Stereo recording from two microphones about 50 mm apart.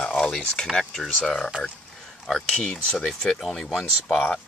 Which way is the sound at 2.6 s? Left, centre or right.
Centre.